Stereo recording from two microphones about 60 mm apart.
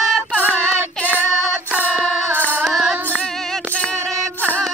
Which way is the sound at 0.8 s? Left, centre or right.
Left.